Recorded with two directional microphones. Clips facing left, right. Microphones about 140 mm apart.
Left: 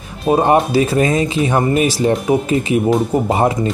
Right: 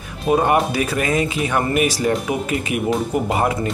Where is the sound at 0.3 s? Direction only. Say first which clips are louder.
Left 4 dB; 30° left (ahead or behind).